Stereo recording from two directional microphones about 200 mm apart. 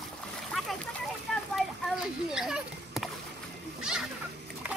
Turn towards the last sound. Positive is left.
turn(degrees=-5)  # may be behind; listen again after turning